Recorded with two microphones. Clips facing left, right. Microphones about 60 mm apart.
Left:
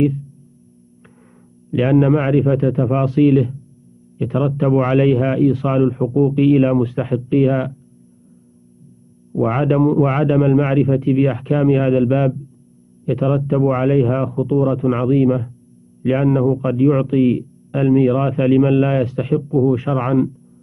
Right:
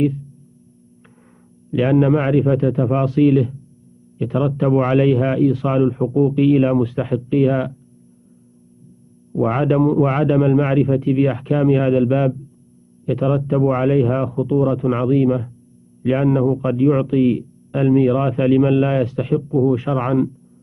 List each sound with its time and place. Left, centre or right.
1.7 s a man's voice: left
3.1 s a man's voice: left
9.5 s a man's voice: centre
10.9 s a man's voice: left
11.7 s a man's voice: centre
13.6 s a man's voice: centre
16.8 s a man's voice: left